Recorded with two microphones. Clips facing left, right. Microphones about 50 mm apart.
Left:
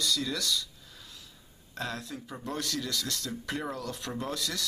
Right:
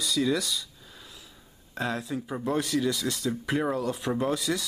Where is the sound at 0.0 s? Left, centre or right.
Centre.